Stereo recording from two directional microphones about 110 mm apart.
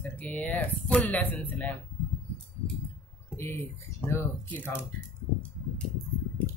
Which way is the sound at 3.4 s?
20° left (ahead or behind).